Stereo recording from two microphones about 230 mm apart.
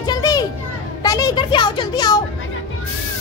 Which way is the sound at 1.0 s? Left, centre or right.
Centre.